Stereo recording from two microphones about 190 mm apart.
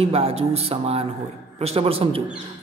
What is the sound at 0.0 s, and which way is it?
A man's voice, 30° right (ahead or behind).